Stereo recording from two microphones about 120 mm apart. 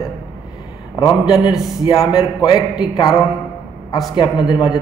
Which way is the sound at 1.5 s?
35° left (ahead or behind).